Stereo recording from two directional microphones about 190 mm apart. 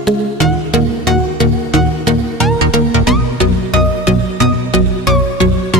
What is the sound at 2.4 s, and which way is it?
Music, centre (ahead or behind).